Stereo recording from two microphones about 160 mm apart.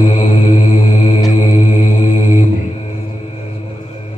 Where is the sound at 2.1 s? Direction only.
50° left (ahead or behind).